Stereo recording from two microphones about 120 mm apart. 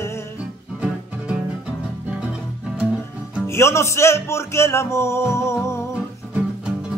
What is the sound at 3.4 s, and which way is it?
Music, 25° left (ahead or behind).